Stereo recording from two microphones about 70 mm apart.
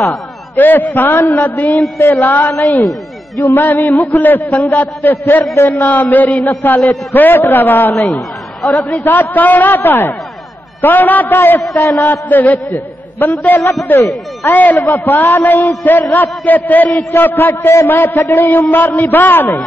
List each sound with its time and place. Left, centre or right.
0.6 s a man's voice: left
2.0 s a man's voice: left
2.2 s a man's voice: left
9.0 s a man's voice: left
12.0 s a man's voice: left